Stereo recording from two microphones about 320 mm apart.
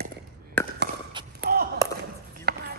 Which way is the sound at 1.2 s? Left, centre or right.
Centre.